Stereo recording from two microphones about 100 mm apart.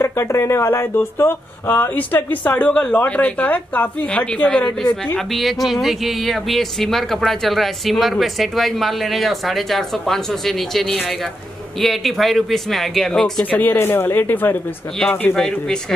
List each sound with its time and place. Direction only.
0.0 s a woman's voice: 25° left (ahead or behind); by 4.7 s 10° left (ahead or behind)
5.3 s speech: centre (ahead or behind)
13.4 s a woman's voice: 15° left (ahead or behind)